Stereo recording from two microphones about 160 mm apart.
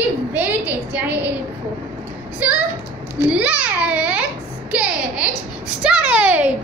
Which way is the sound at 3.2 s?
10° right (ahead or behind).